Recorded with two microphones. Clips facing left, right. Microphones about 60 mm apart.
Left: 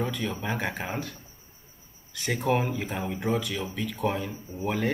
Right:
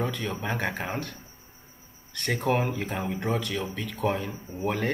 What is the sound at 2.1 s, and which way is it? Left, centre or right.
Speech, centre.